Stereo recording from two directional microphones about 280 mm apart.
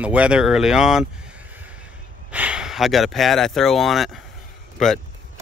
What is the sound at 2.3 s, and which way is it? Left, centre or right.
Speech, centre.